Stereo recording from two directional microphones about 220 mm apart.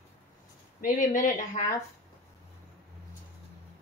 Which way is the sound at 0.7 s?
40° left (ahead or behind).